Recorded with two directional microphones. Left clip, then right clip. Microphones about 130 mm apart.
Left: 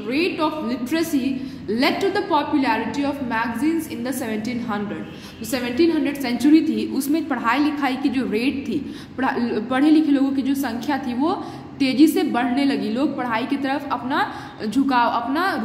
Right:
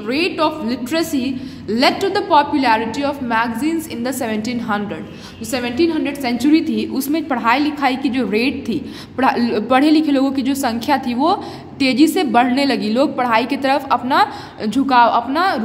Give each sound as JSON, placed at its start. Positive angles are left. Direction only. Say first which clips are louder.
{"t": 0.1, "sound": "a woman's voice", "louder": "right 4 dB", "side_deg": -35}
{"t": 5.5, "sound": "a woman's voice", "louder": "right 2 dB", "side_deg": -20}